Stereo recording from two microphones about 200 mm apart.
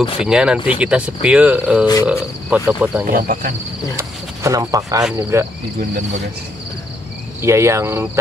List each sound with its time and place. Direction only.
0.0 s speech: 25° left (ahead or behind)
0.3 s speech: 5° right (ahead or behind)
3.1 s speech: 45° right (ahead or behind)
3.9 s speech: 15° right (ahead or behind)
7.4 s speech: 15° right (ahead or behind)